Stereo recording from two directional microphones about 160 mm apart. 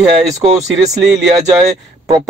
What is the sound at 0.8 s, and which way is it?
Speech, 5° right (ahead or behind).